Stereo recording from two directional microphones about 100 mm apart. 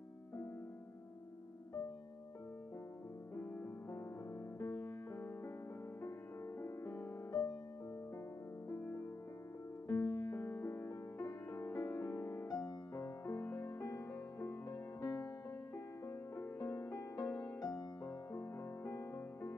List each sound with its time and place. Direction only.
3.3 s music: 20° left (ahead or behind)
8.6 s music: 25° left (ahead or behind)